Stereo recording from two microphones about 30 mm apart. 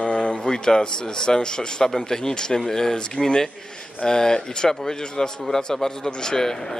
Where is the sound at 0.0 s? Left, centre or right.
Left.